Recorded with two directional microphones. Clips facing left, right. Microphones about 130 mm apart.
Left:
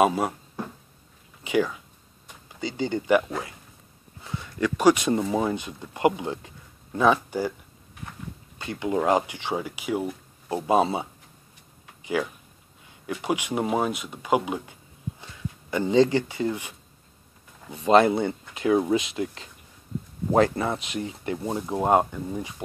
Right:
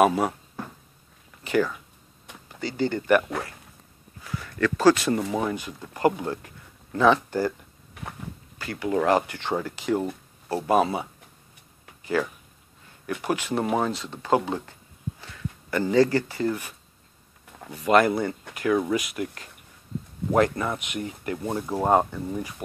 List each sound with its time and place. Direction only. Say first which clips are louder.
0.0 s speech: right 1 dB; 10° left (ahead or behind)
1.4 s speech: even; 15° left (ahead or behind)
8.5 s speech: right 1 dB; 20° left (ahead or behind)
10.5 s speech: even; 25° left (ahead or behind)
12.0 s a sound: right 1 dB; 15° left (ahead or behind)
13.2 s speech: even; 15° left (ahead or behind)
21.4 s speech: even; 15° left (ahead or behind)